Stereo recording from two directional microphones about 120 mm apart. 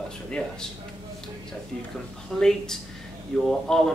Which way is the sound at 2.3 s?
5° left (ahead or behind).